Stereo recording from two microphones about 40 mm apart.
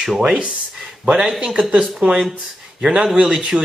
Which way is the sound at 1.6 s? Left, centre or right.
Right.